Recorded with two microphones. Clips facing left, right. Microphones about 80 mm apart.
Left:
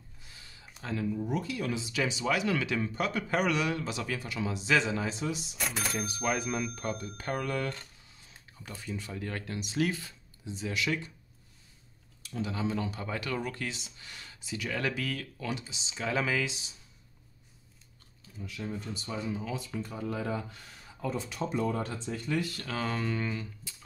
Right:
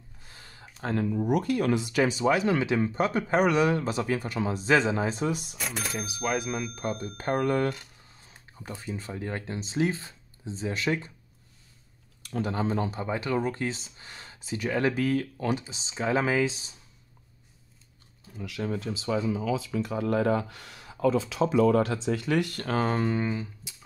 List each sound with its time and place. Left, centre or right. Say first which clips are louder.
0.3 s a sound: right 4 dB; right
1.0 s speech: right 6 dB; right
2.2 s speech: right 6 dB; right
5.6 s speech: even; centre
6.7 s speech: right 3 dB; centre
7.2 s speech: right 9 dB; right
12.2 s speech: right 5 dB; right
18.4 s speech: right 6 dB; right; by 23.7 s centre